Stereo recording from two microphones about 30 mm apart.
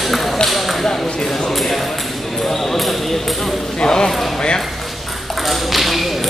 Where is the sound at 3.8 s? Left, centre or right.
Left.